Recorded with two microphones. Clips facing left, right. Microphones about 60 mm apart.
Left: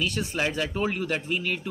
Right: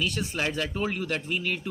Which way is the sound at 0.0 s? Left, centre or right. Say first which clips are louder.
Left 1 dB; centre.